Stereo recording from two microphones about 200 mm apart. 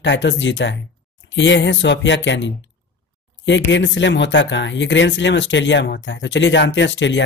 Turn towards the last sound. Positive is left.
turn(degrees=65)  # may be behind; listen again after turning